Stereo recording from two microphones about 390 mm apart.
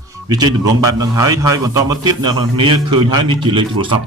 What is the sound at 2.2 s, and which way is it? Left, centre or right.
Speech, right.